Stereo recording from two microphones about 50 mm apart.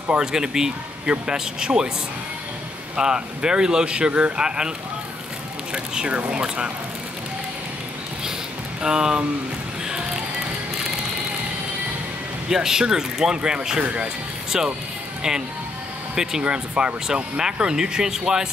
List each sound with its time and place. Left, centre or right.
0.2 s speech: centre
3.0 s speech: centre
8.8 s speech: centre
9.8 s music: centre
12.4 s speech: centre
16.2 s speech: centre